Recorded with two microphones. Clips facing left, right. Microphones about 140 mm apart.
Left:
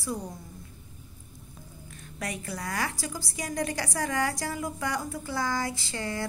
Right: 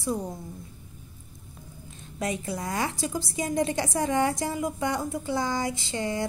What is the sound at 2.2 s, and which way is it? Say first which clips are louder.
A woman's voice: right 5 dB; 20° right (ahead or behind).